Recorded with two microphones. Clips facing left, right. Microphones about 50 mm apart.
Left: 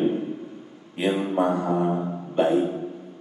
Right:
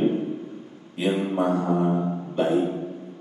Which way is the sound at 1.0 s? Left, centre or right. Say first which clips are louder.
Even; centre.